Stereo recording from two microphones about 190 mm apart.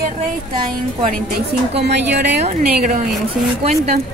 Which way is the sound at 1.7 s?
60° right (ahead or behind).